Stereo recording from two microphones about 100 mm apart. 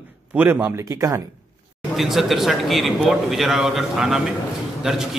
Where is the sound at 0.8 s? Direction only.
35° right (ahead or behind).